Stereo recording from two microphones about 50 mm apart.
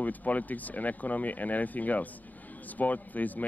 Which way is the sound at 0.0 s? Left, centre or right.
Left.